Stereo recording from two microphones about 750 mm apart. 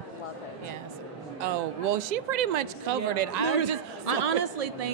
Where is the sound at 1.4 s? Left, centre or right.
Right.